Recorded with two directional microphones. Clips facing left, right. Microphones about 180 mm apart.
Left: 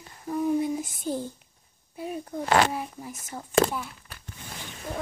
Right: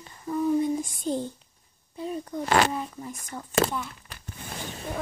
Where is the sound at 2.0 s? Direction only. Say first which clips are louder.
Right 1 dB; 10° left (ahead or behind).